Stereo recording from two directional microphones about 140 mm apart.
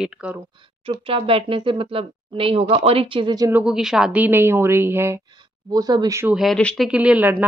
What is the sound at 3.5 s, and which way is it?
A woman's voice, 10° right (ahead or behind).